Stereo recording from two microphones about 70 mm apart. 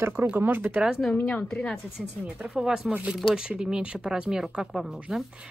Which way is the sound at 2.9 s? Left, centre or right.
Right.